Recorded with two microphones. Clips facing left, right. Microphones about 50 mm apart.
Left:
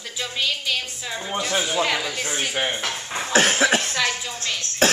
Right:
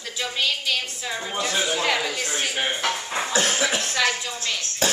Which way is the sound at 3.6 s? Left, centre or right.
Left.